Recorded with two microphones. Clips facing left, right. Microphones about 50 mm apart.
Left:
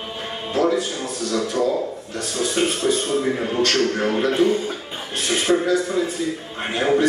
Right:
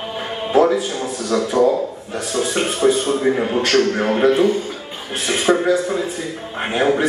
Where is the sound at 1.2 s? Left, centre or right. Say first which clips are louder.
Right 5 dB; right.